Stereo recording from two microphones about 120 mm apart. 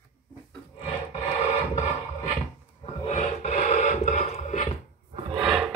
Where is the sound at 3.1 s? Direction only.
70° left (ahead or behind).